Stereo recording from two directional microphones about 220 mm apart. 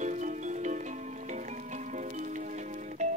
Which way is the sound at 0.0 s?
35° right (ahead or behind).